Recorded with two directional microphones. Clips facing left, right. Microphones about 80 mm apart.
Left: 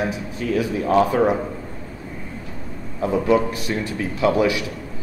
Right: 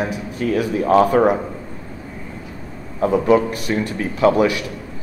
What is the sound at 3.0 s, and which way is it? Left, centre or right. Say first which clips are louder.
Speech: right 5 dB; right.